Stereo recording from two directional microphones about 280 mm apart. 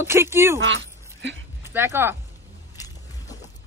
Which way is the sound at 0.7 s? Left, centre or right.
Right.